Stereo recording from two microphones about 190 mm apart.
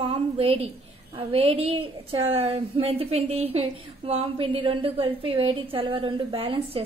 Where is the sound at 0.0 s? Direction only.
30° right (ahead or behind).